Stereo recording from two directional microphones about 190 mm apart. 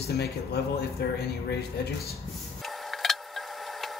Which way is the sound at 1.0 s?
60° left (ahead or behind).